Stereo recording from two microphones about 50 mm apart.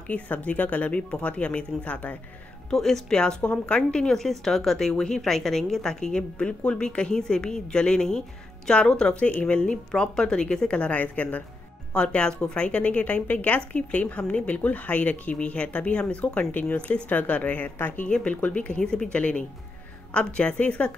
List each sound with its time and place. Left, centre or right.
0.1 s speech: left
2.7 s a woman's voice: centre; by 11.4 s left
11.9 s a woman's voice: left
19.1 s speech: left